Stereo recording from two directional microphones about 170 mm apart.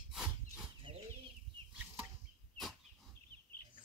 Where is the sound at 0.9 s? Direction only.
30° right (ahead or behind).